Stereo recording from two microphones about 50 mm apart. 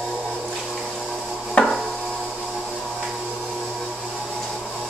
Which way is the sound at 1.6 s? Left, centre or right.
Left.